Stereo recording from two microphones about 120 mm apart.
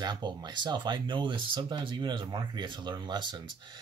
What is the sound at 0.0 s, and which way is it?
Speech, 40° right (ahead or behind).